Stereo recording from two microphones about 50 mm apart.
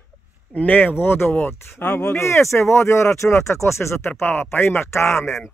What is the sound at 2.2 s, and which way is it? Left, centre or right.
Speech, left.